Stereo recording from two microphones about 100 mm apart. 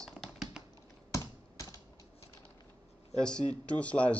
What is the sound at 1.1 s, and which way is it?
Computer keyboard, 30° left (ahead or behind).